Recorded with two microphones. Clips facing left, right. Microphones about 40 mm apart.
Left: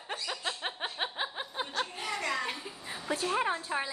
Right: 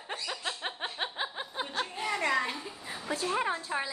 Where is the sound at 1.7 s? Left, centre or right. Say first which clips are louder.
Right 3 dB; centre.